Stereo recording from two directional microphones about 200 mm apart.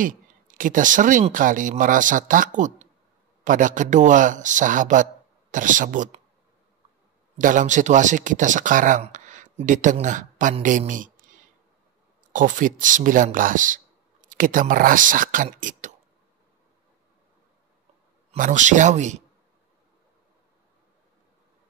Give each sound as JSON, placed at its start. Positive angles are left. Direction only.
{"t": 0.0, "sound": "speech", "side_deg": -40}
{"t": 7.3, "sound": "speech", "side_deg": -40}
{"t": 18.3, "sound": "speech", "side_deg": -40}